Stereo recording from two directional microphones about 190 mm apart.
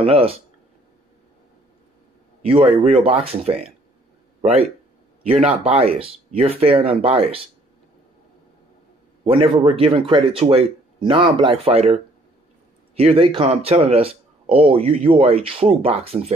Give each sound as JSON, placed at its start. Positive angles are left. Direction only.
{"t": 0.0, "sound": "a man's voice", "side_deg": -30}
{"t": 2.4, "sound": "a man's voice", "side_deg": -30}
{"t": 9.2, "sound": "a man's voice", "side_deg": -30}